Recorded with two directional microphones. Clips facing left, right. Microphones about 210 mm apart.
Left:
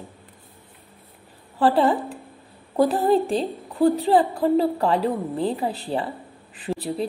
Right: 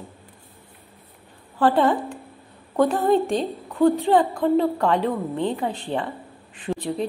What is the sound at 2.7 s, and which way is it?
A woman's voice, 35° left (ahead or behind).